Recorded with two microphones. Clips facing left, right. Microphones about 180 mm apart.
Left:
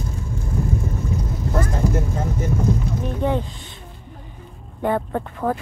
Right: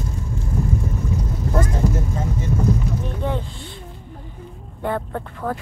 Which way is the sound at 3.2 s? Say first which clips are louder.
Left 7 dB; 15° left (ahead or behind).